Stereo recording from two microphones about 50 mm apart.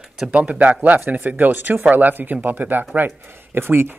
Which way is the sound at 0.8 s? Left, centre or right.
Right.